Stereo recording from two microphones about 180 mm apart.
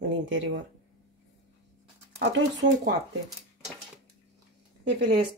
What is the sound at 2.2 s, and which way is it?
Speech, 75° right (ahead or behind).